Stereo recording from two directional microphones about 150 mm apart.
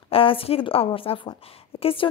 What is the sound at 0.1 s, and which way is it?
A woman's voice, 35° left (ahead or behind).